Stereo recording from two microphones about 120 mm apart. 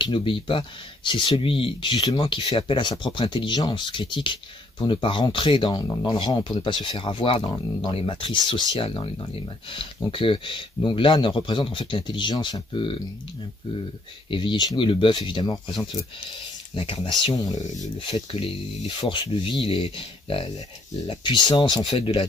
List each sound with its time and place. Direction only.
0.0 s speech: 45° left (ahead or behind)
14.3 s speech: 40° left (ahead or behind)
16.7 s speech: 50° left (ahead or behind)
17.4 s speech: 30° left (ahead or behind)
17.9 s speech: 50° left (ahead or behind)